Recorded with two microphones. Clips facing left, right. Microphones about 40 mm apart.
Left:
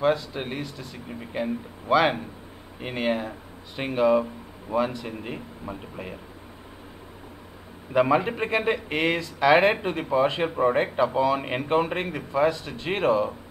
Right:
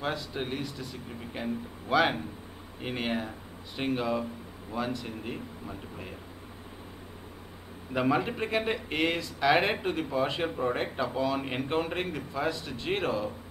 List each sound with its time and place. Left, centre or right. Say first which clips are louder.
0.3 s speech: left 2 dB; left
1.3 s speech: left 6 dB; left
7.9 s speech: left 6 dB; left